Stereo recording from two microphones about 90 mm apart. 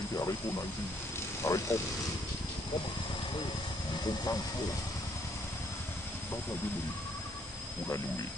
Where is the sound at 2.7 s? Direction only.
55° left (ahead or behind).